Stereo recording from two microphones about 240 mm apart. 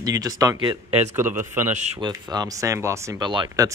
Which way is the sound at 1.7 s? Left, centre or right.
Right.